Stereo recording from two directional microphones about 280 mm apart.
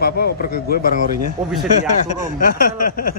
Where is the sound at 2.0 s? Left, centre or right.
Left.